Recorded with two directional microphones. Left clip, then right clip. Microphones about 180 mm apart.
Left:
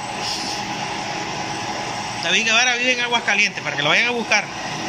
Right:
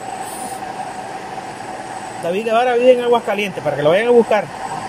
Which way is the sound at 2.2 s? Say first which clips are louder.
Right 1 dB; 40° right (ahead or behind).